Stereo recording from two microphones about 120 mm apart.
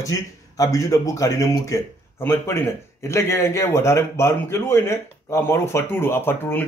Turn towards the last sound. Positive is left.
turn(degrees=20)  # may be behind; listen again after turning